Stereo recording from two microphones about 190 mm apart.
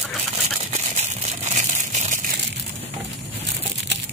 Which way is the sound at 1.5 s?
40° right (ahead or behind).